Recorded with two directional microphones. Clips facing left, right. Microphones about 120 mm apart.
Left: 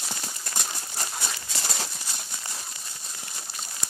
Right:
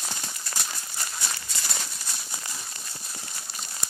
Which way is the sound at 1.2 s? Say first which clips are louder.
Left 2 dB; 30° left (ahead or behind).